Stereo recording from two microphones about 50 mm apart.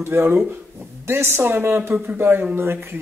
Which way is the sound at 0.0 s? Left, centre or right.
Right.